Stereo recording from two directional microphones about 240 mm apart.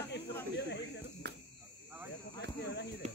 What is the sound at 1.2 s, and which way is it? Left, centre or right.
Cricket, right.